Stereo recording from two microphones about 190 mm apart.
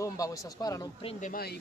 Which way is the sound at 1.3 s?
55° left (ahead or behind).